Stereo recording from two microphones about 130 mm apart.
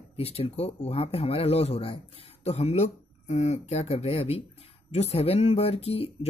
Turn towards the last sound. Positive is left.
turn(degrees=50)  # may be behind; listen again after turning